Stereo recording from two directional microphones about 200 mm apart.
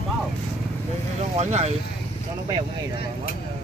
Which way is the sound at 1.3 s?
35° right (ahead or behind).